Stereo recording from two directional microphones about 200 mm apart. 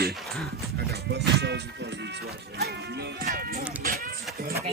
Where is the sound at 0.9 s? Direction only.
55° right (ahead or behind).